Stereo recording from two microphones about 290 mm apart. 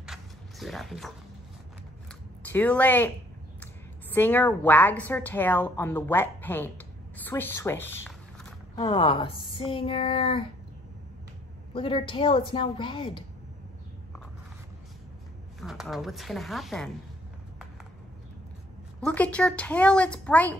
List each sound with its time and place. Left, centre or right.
0.0 s a sound: centre
2.4 s a woman's voice: centre
4.1 s a woman's voice: centre
11.7 s a woman's voice: centre
15.6 s a woman's voice: centre
18.9 s a woman's voice: centre